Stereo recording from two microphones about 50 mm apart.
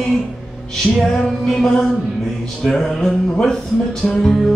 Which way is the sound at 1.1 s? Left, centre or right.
Centre.